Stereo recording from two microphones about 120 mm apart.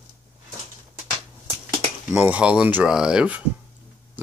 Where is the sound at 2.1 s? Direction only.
10° right (ahead or behind).